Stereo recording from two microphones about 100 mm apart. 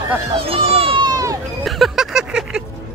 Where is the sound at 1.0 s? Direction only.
35° right (ahead or behind).